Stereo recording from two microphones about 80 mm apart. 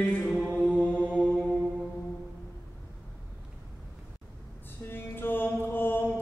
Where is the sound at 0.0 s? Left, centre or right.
Centre.